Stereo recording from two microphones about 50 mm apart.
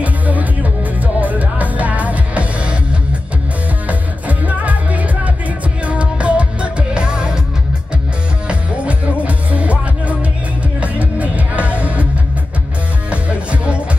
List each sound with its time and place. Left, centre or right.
0.0 s music: right
8.5 s music: right
13.1 s music: right